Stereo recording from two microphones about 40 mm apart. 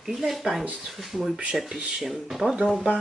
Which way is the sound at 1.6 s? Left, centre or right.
Centre.